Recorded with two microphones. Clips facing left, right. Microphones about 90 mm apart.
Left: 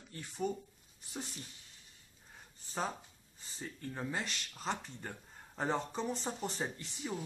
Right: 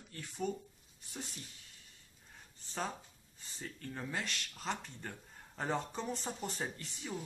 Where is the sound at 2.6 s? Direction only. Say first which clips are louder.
Left 2 dB; 5° left (ahead or behind).